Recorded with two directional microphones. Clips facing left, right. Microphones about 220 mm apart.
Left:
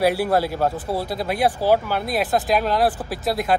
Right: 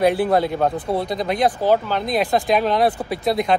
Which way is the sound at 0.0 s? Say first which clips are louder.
Right 2 dB; 5° left (ahead or behind).